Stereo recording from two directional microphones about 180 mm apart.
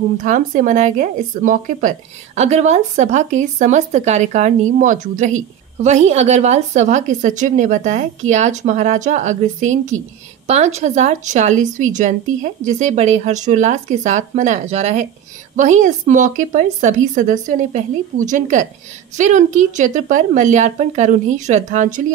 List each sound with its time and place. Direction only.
0.2 s a woman's voice: 45° right (ahead or behind)